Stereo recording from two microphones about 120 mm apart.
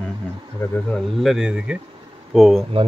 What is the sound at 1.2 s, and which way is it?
A man's voice, 5° right (ahead or behind).